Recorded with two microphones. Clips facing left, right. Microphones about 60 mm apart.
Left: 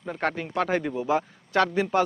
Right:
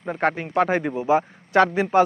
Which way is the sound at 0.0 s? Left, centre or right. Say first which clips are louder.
Right 5 dB; right.